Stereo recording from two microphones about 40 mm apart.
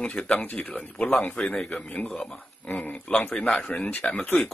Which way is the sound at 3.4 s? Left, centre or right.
Left.